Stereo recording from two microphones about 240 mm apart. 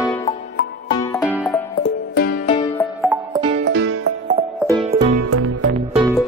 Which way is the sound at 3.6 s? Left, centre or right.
Right.